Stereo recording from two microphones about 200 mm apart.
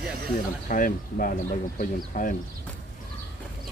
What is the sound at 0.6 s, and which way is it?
Speech, 45° left (ahead or behind).